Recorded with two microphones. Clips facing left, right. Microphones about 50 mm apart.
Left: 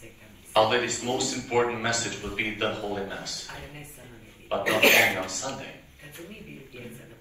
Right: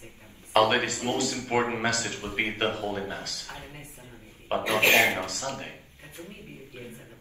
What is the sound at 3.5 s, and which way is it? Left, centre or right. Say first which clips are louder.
A woman's voice: left 1 dB; left.